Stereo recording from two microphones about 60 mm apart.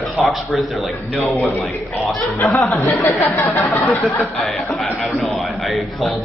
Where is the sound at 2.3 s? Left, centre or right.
Left.